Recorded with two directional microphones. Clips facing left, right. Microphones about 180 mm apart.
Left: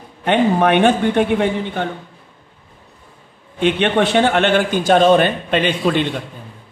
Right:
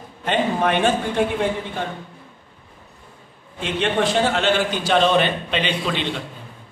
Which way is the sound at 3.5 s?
65° left (ahead or behind).